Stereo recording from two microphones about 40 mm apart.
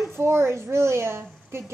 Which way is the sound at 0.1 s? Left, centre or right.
Right.